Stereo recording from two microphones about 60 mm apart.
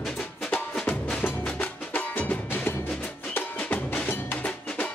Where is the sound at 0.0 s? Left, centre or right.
Centre.